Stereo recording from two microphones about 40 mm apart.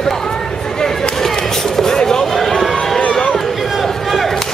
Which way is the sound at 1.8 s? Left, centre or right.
Centre.